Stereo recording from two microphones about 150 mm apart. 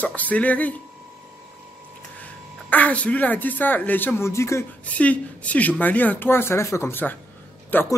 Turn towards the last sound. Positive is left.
turn(degrees=10)  # may be behind; listen again after turning